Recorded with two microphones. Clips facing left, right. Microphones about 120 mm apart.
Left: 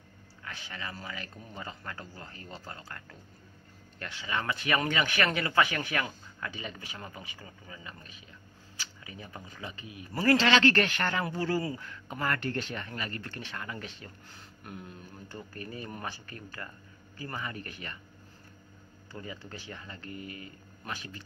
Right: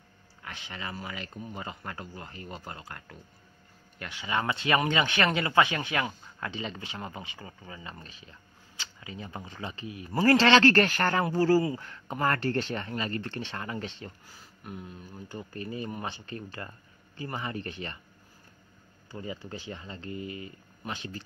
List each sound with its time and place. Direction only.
0.4 s speech: 20° right (ahead or behind)
14.3 s speech: centre (ahead or behind)
15.2 s speech: 20° right (ahead or behind)
19.1 s speech: 15° right (ahead or behind)